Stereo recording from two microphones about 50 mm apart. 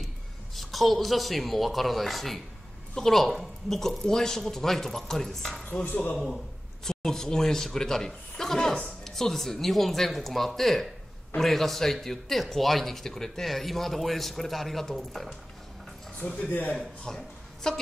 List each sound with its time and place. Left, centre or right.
0.6 s a man's voice: centre
16.4 s speech: left
16.7 s a man's voice: centre